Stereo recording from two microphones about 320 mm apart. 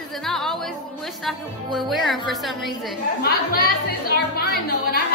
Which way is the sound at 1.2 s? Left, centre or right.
Centre.